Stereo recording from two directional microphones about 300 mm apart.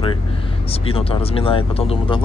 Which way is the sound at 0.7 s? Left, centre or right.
Centre.